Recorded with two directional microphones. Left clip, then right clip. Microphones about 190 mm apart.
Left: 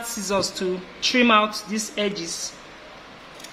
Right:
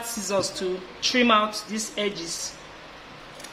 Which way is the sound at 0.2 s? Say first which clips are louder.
Left 2 dB; 25° left (ahead or behind).